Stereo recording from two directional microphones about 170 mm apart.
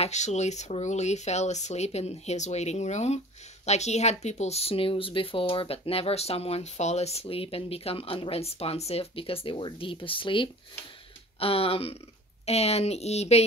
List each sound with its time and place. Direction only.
0.0 s speech: 40° left (ahead or behind)